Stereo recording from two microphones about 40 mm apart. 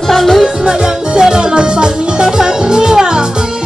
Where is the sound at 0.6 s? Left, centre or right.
Centre.